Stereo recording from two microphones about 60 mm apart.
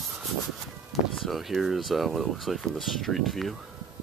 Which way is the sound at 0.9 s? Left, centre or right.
Centre.